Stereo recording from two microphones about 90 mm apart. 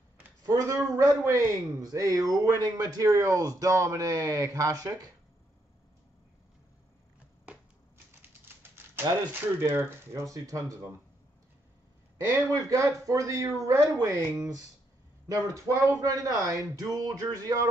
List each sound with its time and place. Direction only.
0.5 s a man's voice: 35° right (ahead or behind)
9.3 s speech: 25° right (ahead or behind)
10.2 s a man's voice: 40° right (ahead or behind)
12.5 s a man's voice: 35° right (ahead or behind)
15.2 s a man's voice: 40° right (ahead or behind)